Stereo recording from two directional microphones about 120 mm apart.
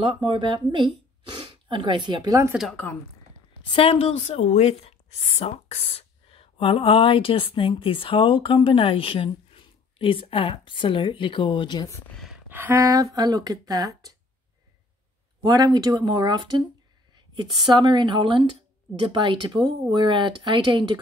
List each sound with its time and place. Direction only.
0.0 s speech: 45° right (ahead or behind)
2.7 s a woman's voice: 15° left (ahead or behind)
3.7 s a woman's voice: 55° left (ahead or behind)
12.4 s speech: 15° right (ahead or behind)
15.4 s speech: 35° right (ahead or behind)
17.7 s speech: 40° right (ahead or behind)